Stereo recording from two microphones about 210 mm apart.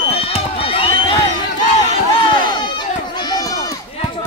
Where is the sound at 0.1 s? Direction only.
25° left (ahead or behind).